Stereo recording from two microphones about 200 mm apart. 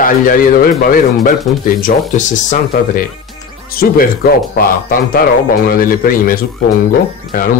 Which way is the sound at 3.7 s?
45° left (ahead or behind).